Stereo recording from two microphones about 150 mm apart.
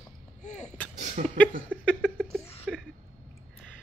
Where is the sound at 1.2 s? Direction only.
60° right (ahead or behind).